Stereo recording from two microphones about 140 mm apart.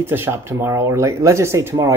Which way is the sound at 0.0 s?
15° right (ahead or behind).